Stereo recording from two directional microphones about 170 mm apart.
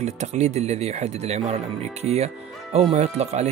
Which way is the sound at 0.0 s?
40° right (ahead or behind).